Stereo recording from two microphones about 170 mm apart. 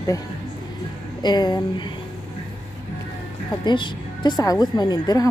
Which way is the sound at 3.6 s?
25° left (ahead or behind).